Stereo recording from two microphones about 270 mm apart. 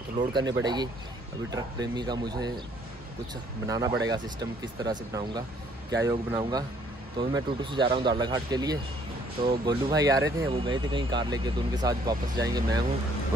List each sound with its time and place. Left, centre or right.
0.3 s speech: centre
3.6 s speech: centre